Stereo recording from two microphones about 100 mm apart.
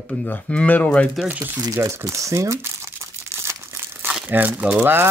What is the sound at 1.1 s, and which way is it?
Speech, 10° right (ahead or behind).